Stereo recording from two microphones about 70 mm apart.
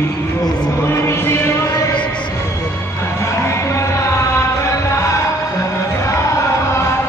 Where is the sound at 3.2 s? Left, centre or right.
Left.